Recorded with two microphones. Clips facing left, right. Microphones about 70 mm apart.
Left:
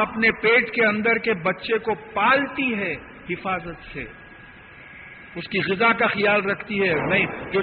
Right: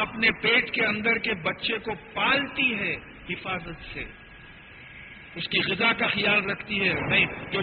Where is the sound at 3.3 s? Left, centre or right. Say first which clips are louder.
Left 7 dB; left.